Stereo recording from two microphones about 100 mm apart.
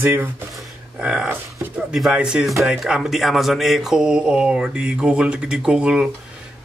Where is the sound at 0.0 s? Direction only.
20° right (ahead or behind).